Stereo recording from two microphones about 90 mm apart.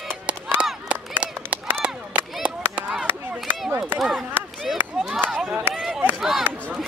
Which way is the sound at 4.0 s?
5° right (ahead or behind).